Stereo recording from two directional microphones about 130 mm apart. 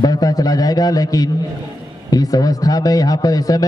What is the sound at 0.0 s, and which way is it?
A man's voice, 30° left (ahead or behind).